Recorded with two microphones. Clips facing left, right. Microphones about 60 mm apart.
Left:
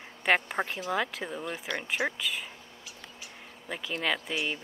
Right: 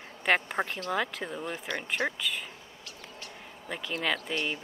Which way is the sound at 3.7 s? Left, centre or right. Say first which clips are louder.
Even; centre.